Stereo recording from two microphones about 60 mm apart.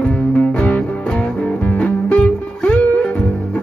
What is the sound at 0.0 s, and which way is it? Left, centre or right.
Music, left.